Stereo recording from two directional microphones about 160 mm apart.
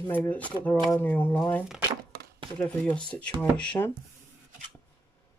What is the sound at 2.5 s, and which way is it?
Speech, 10° left (ahead or behind).